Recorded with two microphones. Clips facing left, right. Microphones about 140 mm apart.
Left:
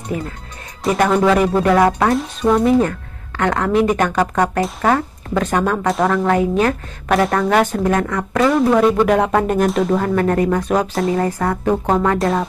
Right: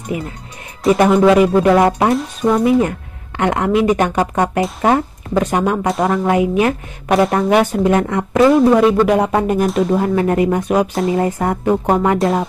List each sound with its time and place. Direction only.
0.1 s speech: 10° right (ahead or behind)
0.8 s speech: 20° right (ahead or behind)
1.1 s speech: 10° right (ahead or behind)
3.3 s speech: 20° right (ahead or behind)
5.9 s speech: centre (ahead or behind)
6.1 s speech: 10° right (ahead or behind)
8.5 s speech: centre (ahead or behind)
9.9 s speech: 15° right (ahead or behind)